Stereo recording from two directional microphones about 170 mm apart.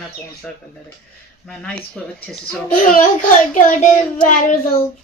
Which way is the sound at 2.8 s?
50° left (ahead or behind).